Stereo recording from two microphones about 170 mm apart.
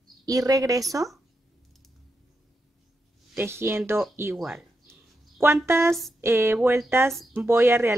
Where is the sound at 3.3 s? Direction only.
15° right (ahead or behind).